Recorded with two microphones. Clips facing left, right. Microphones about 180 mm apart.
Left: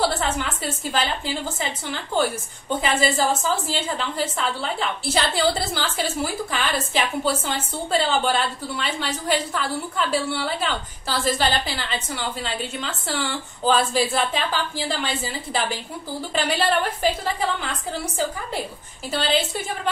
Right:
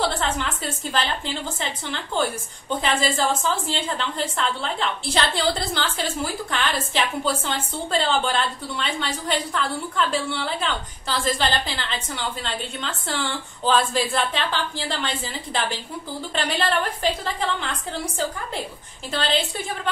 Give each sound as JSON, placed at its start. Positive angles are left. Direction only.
{"t": 0.0, "sound": "a woman's voice", "side_deg": 5}